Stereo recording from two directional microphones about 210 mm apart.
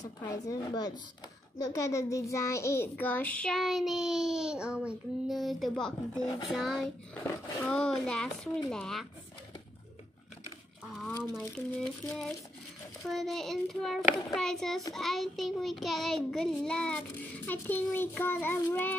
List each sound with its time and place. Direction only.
0.0 s a child's voice: 15° left (ahead or behind)
11.3 s a child's voice: centre (ahead or behind)